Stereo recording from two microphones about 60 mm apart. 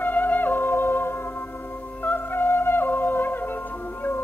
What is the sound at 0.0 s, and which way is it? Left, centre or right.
Music, left.